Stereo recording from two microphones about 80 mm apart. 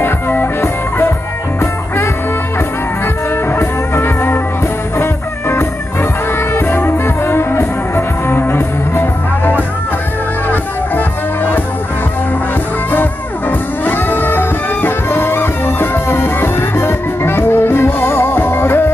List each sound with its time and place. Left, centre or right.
0.0 s music: left
3.4 s music: left
12.9 s music: left